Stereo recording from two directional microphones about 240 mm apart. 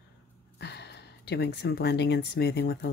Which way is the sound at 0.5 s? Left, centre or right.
Left.